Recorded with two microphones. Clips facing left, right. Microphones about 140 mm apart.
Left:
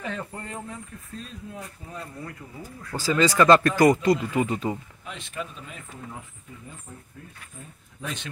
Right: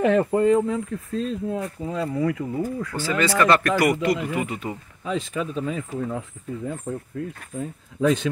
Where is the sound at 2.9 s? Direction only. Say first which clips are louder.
Right 2 dB; 5° left (ahead or behind).